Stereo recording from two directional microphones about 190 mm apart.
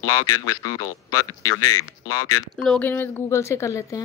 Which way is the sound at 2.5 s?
5° left (ahead or behind).